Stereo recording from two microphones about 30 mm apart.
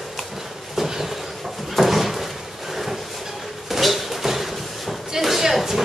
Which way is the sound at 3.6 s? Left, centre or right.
Centre.